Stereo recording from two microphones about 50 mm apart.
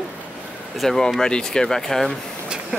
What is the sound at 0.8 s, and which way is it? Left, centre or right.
Speech, centre.